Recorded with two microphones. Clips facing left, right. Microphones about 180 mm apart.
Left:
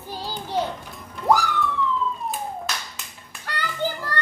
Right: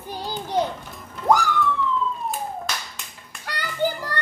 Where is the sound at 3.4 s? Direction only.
10° right (ahead or behind).